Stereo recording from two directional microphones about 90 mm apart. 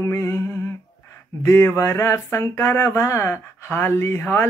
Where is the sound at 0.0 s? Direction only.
30° left (ahead or behind).